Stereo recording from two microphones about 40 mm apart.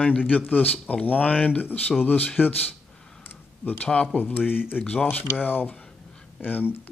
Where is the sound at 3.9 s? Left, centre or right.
Left.